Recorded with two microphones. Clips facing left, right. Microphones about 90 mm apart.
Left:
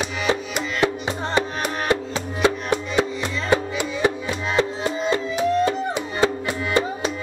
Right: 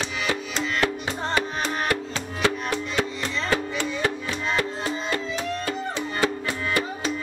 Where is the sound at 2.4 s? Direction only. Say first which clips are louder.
Left 4 dB; 20° left (ahead or behind).